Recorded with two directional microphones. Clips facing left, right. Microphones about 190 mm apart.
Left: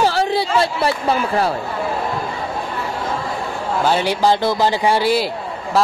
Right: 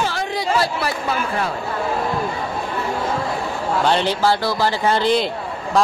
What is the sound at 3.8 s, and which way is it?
Speech, 5° left (ahead or behind).